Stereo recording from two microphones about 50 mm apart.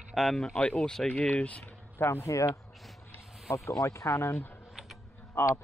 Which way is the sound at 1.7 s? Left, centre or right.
Left.